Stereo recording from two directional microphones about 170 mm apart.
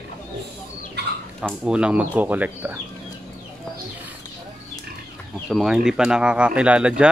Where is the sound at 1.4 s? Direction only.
5° right (ahead or behind).